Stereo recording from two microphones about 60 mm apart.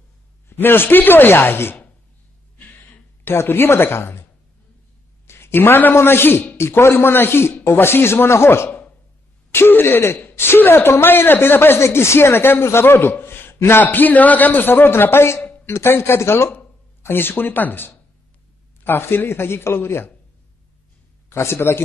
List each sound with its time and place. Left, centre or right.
0.5 s speech: left
3.3 s speech: left
5.2 s a sound: left
5.9 s speech: left
8.6 s a sound: left
9.5 s speech: left
13.8 s speech: left
21.3 s speech: left